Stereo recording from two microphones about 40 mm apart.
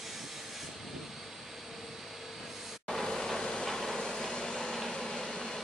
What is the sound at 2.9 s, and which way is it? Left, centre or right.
Vehicle, centre.